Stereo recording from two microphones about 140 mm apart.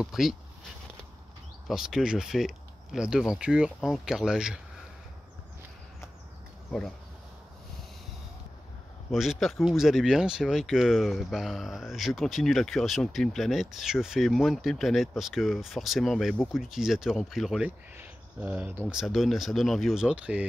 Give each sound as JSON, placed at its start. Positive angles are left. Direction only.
{"t": 0.0, "sound": "speech", "side_deg": 0}
{"t": 1.7, "sound": "speech", "side_deg": -5}
{"t": 9.1, "sound": "speech", "side_deg": 0}